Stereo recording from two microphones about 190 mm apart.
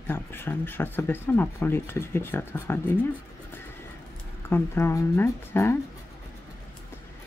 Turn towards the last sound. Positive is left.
turn(degrees=15)  # may be behind; listen again after turning